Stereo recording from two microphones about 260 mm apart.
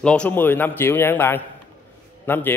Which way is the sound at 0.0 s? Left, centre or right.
Centre.